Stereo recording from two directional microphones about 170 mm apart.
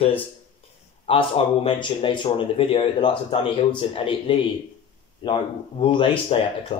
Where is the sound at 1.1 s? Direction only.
30° left (ahead or behind).